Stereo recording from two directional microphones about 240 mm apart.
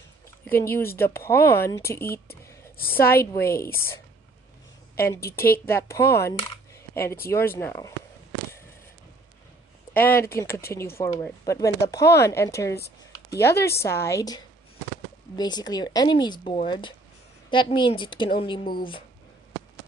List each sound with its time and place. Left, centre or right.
0.5 s speech: centre
5.0 s speech: centre
9.9 s a woman's voice: centre